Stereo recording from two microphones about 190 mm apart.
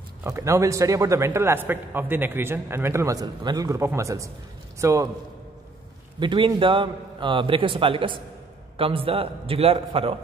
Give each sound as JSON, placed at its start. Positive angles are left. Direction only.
{"t": 0.2, "sound": "a man's voice", "side_deg": -15}
{"t": 6.1, "sound": "a man's voice", "side_deg": -25}